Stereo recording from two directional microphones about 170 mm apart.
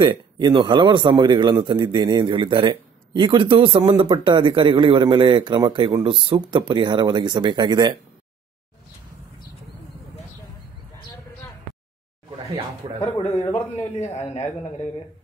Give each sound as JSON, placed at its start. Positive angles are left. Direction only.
{"t": 0.0, "sound": "speech", "side_deg": -25}
{"t": 12.8, "sound": "speech", "side_deg": -30}
{"t": 13.5, "sound": "a man's voice", "side_deg": 40}